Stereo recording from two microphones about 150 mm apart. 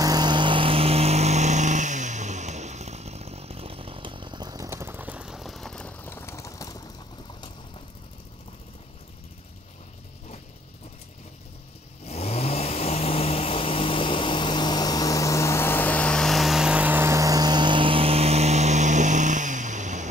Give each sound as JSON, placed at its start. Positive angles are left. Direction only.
{"t": 0.0, "sound": "vehicle", "side_deg": -25}
{"t": 12.1, "sound": "vehicle", "side_deg": 45}